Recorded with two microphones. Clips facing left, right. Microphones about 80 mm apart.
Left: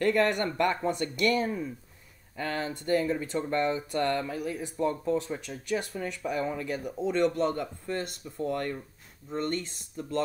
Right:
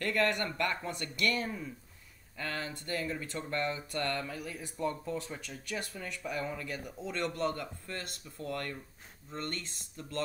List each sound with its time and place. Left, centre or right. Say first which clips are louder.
0.0 s speech: left 6 dB; centre
6.0 s speech: left 6 dB; centre